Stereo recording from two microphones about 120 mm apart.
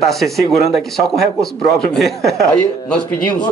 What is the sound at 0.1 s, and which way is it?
Speech, centre (ahead or behind).